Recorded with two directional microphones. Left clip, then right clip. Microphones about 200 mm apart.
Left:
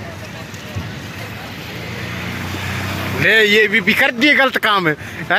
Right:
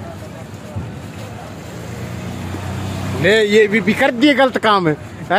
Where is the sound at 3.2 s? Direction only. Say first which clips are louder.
Even; 10° right (ahead or behind).